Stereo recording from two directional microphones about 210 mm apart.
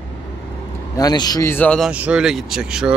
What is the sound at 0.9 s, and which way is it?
Speech, 20° left (ahead or behind).